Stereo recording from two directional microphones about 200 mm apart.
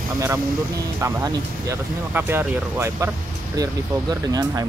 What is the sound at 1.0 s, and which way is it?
Speech, 15° right (ahead or behind).